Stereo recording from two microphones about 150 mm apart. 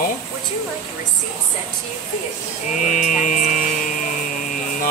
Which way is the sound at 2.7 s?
55° left (ahead or behind).